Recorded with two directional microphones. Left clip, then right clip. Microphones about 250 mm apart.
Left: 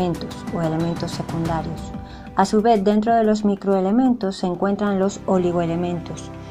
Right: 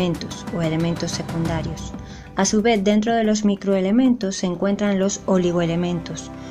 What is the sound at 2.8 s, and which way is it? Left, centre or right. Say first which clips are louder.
Speech: left 2 dB; right.